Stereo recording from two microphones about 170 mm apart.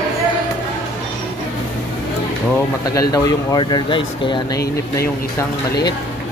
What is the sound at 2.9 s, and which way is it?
Speech, 20° left (ahead or behind).